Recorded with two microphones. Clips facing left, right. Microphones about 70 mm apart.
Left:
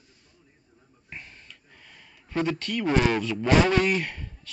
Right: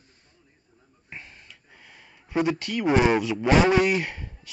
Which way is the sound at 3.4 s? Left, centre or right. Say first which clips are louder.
Right 1 dB; centre.